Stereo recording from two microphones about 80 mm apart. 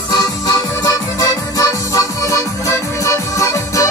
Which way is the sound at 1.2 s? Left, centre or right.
Left.